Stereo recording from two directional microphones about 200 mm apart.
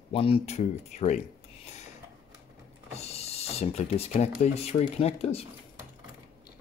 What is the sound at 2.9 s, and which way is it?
Speech, 30° left (ahead or behind).